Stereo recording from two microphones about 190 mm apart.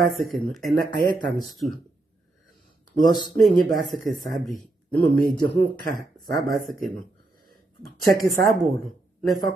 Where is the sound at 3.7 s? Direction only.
45° right (ahead or behind).